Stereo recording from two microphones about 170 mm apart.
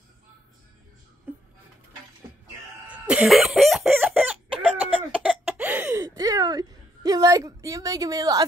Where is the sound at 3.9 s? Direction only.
10° right (ahead or behind).